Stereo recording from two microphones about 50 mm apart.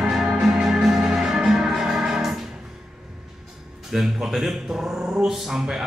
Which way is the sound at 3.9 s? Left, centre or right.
Centre.